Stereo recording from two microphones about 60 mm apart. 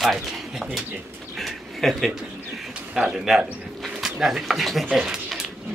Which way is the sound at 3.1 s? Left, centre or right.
Centre.